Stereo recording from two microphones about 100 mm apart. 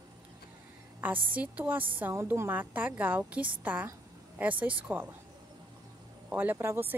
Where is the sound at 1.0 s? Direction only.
15° right (ahead or behind).